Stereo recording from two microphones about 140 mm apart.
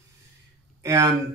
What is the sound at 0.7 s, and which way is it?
Speech, 20° right (ahead or behind).